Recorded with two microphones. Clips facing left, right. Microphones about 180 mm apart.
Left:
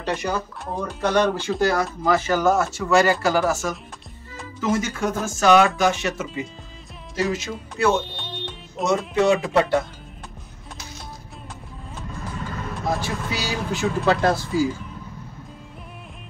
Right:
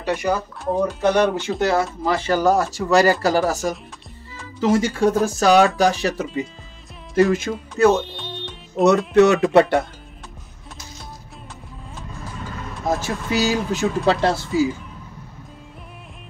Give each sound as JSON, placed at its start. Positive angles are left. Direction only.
{"t": 0.0, "sound": "speech", "side_deg": -10}
{"t": 1.6, "sound": "speech", "side_deg": -25}
{"t": 8.2, "sound": "music", "side_deg": 0}
{"t": 8.8, "sound": "speech", "side_deg": -70}
{"t": 13.0, "sound": "speech", "side_deg": -45}
{"t": 14.2, "sound": "speech", "side_deg": -25}